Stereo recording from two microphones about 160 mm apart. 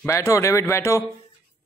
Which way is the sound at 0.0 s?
20° left (ahead or behind).